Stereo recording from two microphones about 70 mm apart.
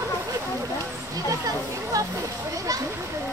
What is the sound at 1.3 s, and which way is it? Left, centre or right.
Speech, right.